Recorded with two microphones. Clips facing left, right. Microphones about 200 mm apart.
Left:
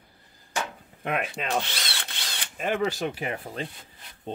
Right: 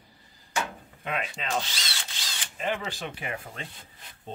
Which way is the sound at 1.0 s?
55° left (ahead or behind).